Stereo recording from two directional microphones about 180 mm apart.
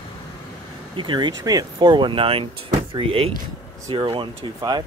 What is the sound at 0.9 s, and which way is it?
Speech, 25° right (ahead or behind).